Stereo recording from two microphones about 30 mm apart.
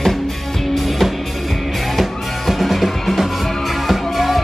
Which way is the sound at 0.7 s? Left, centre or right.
Centre.